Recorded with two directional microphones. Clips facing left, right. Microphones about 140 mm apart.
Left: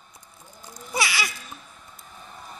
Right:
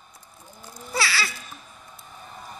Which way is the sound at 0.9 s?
15° left (ahead or behind).